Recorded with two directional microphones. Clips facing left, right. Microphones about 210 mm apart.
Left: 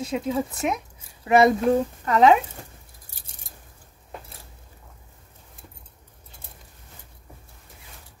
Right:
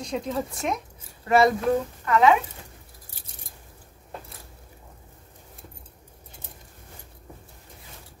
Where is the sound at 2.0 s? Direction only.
35° left (ahead or behind).